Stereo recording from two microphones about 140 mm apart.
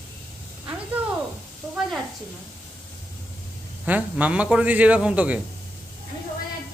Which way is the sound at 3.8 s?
10° right (ahead or behind).